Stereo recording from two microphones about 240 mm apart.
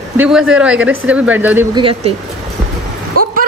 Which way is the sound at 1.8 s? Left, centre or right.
Right.